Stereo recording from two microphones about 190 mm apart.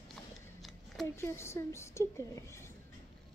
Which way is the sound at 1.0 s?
15° left (ahead or behind).